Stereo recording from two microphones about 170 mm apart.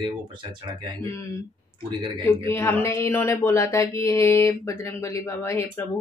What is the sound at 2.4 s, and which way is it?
Speech, 15° left (ahead or behind).